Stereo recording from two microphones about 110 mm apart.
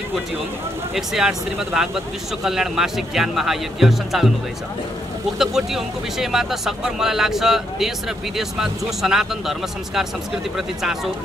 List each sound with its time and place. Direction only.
0.9 s speech: 5° right (ahead or behind)
5.4 s speech: 5° right (ahead or behind)